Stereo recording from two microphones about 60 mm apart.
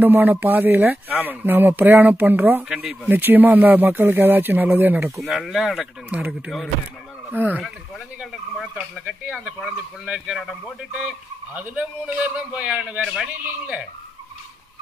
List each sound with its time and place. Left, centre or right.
0.0 s speech: right
5.1 s speech: centre
6.1 s a man's voice: right
7.3 s a man's voice: right
9.3 s speech: centre
11.5 s a man's voice: right